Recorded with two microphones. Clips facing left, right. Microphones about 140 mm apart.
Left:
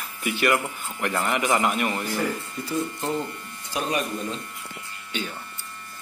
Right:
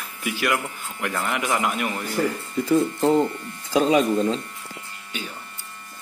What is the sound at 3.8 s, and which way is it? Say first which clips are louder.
Speech: right 9 dB; 90° right.